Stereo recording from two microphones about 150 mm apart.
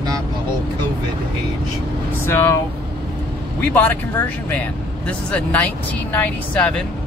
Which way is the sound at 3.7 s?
10° left (ahead or behind).